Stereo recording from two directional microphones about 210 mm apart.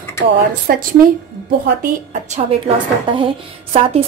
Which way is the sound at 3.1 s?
25° right (ahead or behind).